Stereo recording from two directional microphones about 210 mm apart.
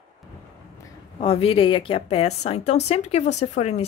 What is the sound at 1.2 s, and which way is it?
A woman's voice, 25° left (ahead or behind).